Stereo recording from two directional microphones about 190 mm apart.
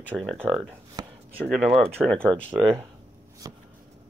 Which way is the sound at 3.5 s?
20° right (ahead or behind).